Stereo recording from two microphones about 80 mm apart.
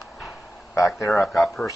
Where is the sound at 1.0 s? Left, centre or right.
Left.